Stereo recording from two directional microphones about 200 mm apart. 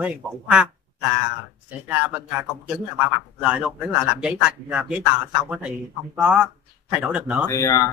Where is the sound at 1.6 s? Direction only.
10° right (ahead or behind).